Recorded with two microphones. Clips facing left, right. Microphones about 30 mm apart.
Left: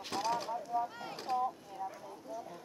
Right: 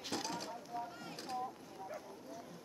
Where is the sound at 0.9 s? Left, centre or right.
Left.